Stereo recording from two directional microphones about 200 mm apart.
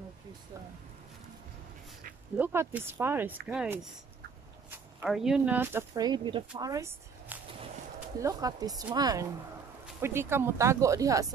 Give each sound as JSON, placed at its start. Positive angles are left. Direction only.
{"t": 2.3, "sound": "speech", "side_deg": -10}